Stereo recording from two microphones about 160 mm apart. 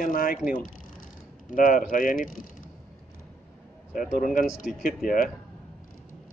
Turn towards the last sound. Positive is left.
turn(degrees=60)  # may be behind; listen again after turning